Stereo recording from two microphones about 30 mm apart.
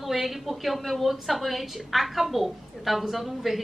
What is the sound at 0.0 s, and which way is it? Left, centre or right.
A woman's voice, centre.